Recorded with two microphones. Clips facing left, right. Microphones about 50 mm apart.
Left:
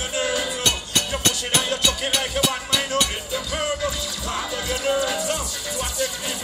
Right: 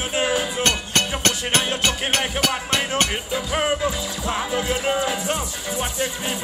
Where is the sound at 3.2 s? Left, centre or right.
Right.